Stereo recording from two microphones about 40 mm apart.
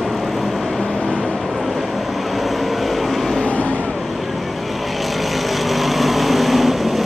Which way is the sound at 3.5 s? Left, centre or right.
Left.